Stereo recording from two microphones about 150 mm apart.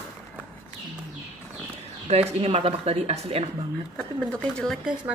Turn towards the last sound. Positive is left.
turn(degrees=0)  # may be behind; listen again after turning